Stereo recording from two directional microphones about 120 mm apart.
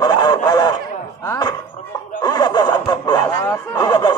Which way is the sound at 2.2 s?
35° left (ahead or behind).